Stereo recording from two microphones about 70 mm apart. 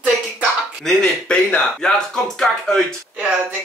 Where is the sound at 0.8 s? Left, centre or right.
Centre.